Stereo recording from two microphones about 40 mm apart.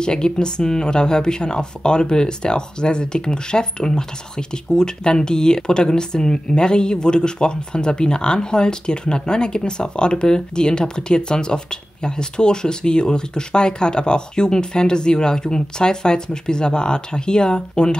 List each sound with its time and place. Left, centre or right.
0.0 s speech: left